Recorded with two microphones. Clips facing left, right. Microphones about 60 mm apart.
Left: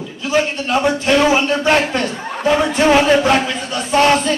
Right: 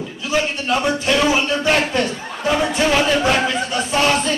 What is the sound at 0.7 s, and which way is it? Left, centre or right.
Speech, left.